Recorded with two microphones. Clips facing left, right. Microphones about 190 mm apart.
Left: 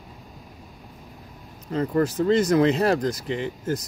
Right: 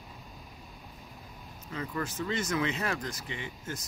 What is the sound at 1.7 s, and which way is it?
Speech, 40° left (ahead or behind).